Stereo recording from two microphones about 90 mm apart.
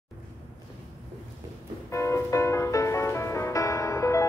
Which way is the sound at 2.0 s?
35° left (ahead or behind).